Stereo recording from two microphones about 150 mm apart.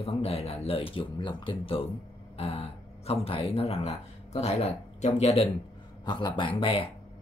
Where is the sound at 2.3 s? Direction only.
40° left (ahead or behind).